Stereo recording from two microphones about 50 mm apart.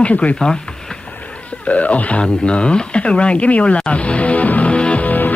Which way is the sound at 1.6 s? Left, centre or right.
Left.